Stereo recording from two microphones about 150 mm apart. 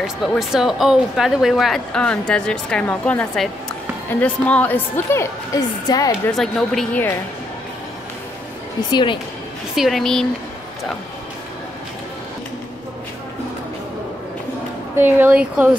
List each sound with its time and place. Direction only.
0.0 s a woman's voice: centre (ahead or behind); by 6.1 s 25° left (ahead or behind)
6.3 s speech: centre (ahead or behind)
8.9 s speech: 35° left (ahead or behind)
9.8 s speech: centre (ahead or behind)
15.0 s a woman's voice: 15° right (ahead or behind)